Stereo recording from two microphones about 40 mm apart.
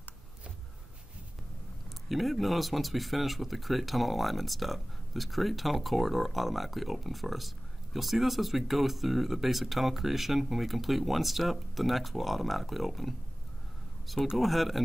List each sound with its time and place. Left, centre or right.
2.0 s speech: centre
14.3 s speech: centre